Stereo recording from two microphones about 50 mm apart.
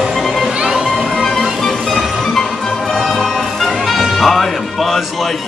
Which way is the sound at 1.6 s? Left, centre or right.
Centre.